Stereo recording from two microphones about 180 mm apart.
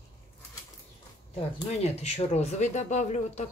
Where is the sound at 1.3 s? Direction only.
35° left (ahead or behind).